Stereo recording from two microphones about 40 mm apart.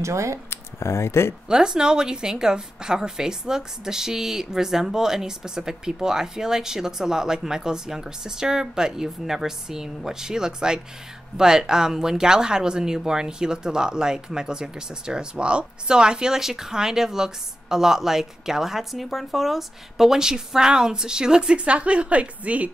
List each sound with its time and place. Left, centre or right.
0.5 s speech: left
1.5 s speech: centre; by 22.7 s right